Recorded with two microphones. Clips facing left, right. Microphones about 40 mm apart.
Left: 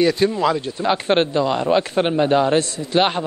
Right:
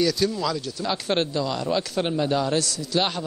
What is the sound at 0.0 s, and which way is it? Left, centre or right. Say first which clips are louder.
A man's voice: left 6 dB; left.